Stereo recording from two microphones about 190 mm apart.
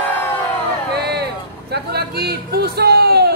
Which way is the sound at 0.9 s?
60° right (ahead or behind).